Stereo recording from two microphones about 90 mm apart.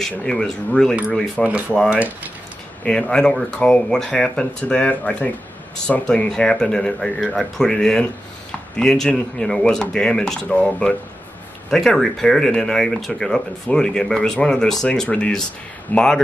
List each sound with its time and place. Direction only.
0.2 s speech: 10° left (ahead or behind)
1.9 s speech: 15° right (ahead or behind)
2.8 s speech: 10° left (ahead or behind)